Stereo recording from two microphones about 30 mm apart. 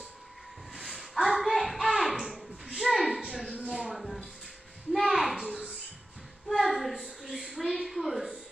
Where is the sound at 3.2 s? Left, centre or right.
Right.